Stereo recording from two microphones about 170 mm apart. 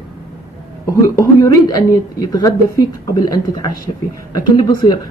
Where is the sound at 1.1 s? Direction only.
15° left (ahead or behind).